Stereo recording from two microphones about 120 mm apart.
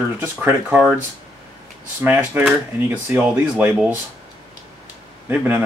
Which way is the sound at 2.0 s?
15° right (ahead or behind).